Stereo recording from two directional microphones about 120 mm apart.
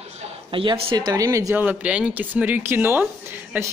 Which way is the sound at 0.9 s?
30° right (ahead or behind).